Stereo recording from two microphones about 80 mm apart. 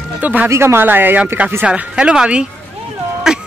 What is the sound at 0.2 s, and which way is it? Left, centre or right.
Speech, right.